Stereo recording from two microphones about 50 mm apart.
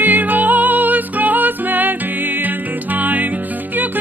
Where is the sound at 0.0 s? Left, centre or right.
Right.